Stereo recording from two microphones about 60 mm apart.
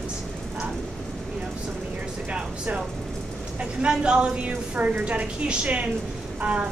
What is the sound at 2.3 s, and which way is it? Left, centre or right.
Speech, centre.